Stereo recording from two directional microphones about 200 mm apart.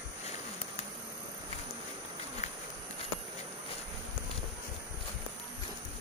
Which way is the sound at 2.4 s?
35° left (ahead or behind).